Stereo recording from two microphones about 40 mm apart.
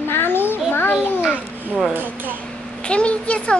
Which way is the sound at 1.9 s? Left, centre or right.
Right.